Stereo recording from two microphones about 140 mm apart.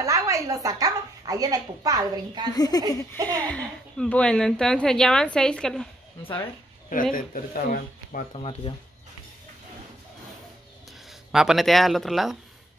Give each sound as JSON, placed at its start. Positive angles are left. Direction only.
{"t": 0.0, "sound": "speech", "side_deg": -25}
{"t": 2.5, "sound": "speech", "side_deg": 30}
{"t": 3.4, "sound": "a woman's voice", "side_deg": 5}
{"t": 6.9, "sound": "speech", "side_deg": 75}
{"t": 8.4, "sound": "speech", "side_deg": 45}
{"t": 10.9, "sound": "speech", "side_deg": 0}